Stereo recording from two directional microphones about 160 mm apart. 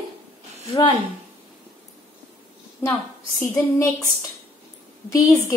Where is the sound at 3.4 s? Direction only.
15° left (ahead or behind).